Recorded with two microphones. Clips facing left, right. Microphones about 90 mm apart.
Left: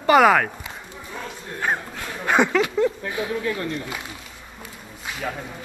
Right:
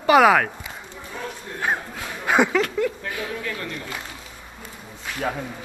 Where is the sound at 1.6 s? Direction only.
5° right (ahead or behind).